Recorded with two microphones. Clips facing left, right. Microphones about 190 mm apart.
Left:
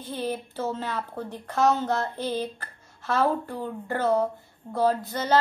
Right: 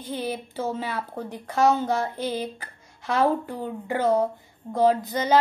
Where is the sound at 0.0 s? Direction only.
10° right (ahead or behind).